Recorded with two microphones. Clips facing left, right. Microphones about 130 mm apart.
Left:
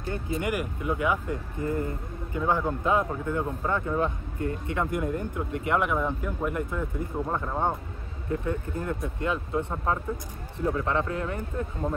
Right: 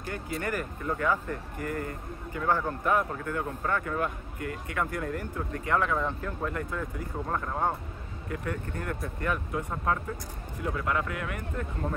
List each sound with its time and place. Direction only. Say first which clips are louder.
0.0 s speech: left 4 dB; 20° left (ahead or behind)